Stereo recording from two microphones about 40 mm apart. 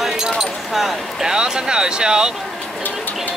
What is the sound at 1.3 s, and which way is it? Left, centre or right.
Speech, centre.